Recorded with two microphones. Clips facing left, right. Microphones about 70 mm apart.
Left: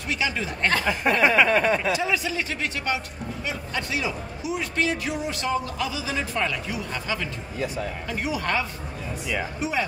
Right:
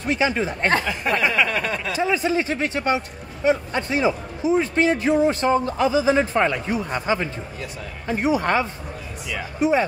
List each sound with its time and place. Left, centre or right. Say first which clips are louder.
0.0 s speech: right 6 dB; right
0.8 s a sound: left 1 dB; centre
2.0 s a man's voice: right 5 dB; right